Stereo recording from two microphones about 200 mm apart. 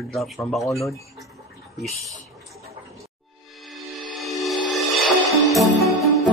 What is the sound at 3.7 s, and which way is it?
Music, centre (ahead or behind).